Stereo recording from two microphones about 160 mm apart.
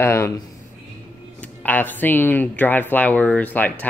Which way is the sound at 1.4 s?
10° left (ahead or behind).